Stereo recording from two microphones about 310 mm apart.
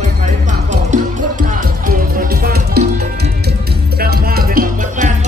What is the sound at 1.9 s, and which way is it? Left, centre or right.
Music, right.